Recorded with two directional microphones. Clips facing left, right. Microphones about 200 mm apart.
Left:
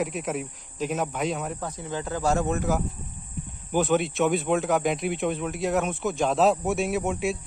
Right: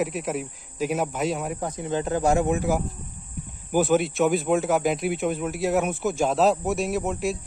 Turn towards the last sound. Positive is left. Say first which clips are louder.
# even
turn(degrees=0)  # may be behind; listen again after turning